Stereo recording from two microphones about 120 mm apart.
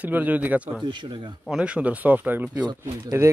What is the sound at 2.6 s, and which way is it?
Speech, 30° right (ahead or behind).